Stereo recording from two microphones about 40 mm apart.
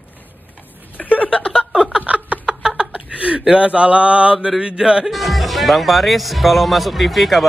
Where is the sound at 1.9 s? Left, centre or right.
Right.